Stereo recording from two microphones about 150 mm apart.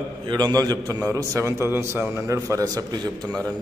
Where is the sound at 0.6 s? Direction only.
25° right (ahead or behind).